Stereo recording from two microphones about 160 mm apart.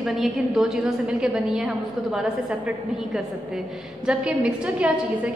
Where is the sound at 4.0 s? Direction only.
5° right (ahead or behind).